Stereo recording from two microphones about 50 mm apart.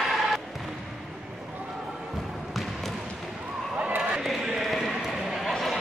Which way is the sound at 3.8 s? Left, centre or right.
Right.